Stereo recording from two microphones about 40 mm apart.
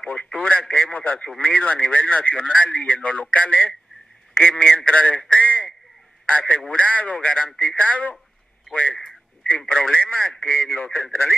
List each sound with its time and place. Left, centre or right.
0.0 s speech: left
5.4 s a sound: left
6.2 s a man's voice: left
9.7 s speech: left
10.4 s speech: left